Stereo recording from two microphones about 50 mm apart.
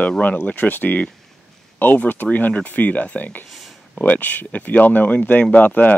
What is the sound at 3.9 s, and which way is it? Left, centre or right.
Speech, left.